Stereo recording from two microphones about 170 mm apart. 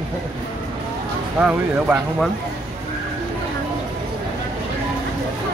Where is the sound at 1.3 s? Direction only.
5° right (ahead or behind).